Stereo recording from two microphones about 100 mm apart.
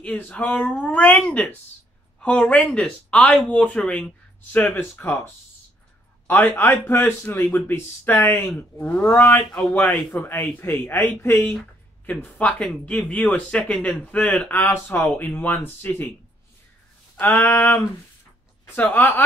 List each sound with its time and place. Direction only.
0.0 s a man's voice: 15° left (ahead or behind)
17.2 s speech: 15° left (ahead or behind)